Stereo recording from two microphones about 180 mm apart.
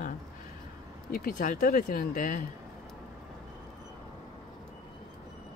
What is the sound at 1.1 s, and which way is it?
Speech, 50° left (ahead or behind).